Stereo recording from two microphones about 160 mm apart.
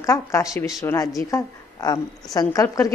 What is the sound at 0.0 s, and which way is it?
A woman's voice, 20° left (ahead or behind).